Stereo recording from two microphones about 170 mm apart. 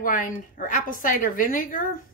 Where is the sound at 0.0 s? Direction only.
50° left (ahead or behind).